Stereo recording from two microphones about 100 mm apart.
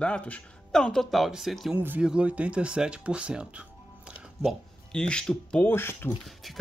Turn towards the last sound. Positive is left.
turn(degrees=0)  # may be behind; listen again after turning